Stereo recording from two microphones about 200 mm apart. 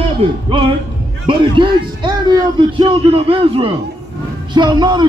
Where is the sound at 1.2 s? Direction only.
25° right (ahead or behind).